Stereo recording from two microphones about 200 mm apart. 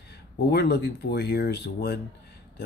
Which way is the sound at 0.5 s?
55° left (ahead or behind).